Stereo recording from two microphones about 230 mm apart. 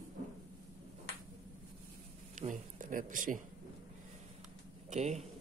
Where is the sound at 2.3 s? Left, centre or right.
Right.